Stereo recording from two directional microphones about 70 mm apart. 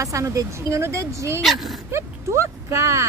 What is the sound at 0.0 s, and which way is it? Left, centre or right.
Speech, right.